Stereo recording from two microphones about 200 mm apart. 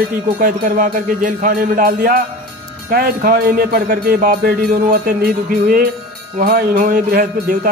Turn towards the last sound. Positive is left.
turn(degrees=-45)  # may be behind; listen again after turning